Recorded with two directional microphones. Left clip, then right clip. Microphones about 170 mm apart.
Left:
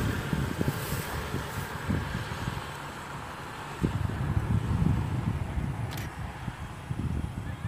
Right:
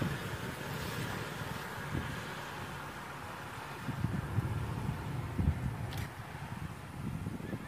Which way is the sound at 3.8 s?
55° left (ahead or behind).